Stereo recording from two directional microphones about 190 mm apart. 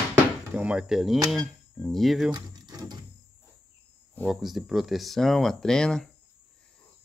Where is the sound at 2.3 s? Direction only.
20° right (ahead or behind).